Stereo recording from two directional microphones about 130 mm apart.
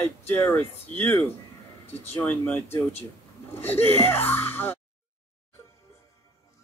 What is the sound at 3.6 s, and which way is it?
Speech, 15° left (ahead or behind).